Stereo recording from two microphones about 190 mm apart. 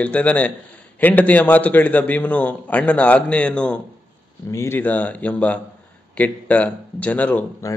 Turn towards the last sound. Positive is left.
turn(degrees=10)  # may be behind; listen again after turning